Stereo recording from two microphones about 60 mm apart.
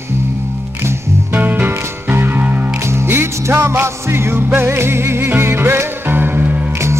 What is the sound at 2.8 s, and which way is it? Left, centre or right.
Music, right.